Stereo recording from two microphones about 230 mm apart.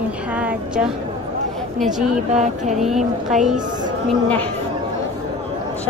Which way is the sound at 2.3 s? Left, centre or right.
Right.